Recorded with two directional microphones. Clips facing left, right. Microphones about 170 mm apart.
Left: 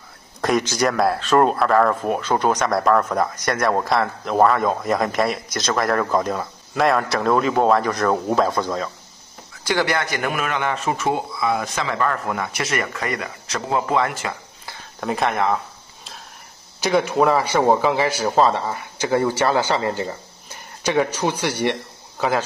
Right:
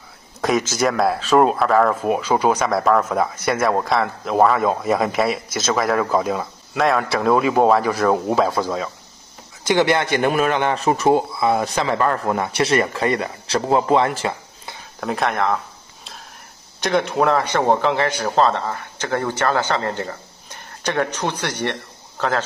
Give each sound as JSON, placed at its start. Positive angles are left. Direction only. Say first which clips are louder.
{"t": 0.4, "sound": "speech", "louder": "even", "side_deg": 0}
{"t": 9.7, "sound": "a man's voice", "louder": "right 4 dB", "side_deg": -20}
{"t": 15.0, "sound": "a sound", "louder": "even", "side_deg": 0}
{"t": 16.8, "sound": "a man's voice", "louder": "left 1 dB", "side_deg": 0}